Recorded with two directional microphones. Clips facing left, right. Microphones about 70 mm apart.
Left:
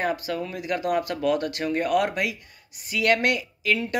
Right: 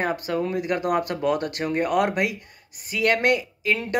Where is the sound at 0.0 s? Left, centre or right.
Right.